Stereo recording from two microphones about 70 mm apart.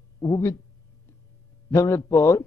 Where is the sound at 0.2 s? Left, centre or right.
Left.